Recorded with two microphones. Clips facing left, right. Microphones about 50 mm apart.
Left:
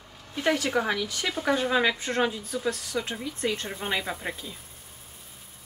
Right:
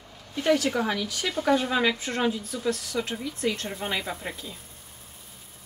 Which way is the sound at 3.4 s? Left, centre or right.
Left.